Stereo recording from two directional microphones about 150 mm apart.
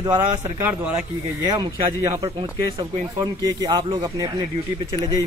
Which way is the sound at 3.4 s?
25° right (ahead or behind).